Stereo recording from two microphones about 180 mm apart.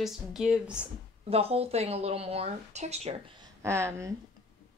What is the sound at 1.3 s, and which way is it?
Speech, 35° right (ahead or behind).